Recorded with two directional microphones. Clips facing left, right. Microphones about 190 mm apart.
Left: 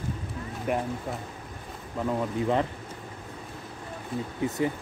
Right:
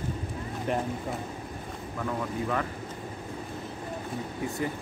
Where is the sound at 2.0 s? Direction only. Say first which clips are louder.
Left 4 dB; 25° left (ahead or behind).